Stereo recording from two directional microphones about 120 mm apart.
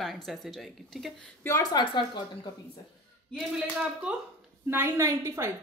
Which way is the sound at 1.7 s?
35° left (ahead or behind).